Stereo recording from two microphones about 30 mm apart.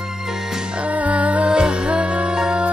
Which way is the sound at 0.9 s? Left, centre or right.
Right.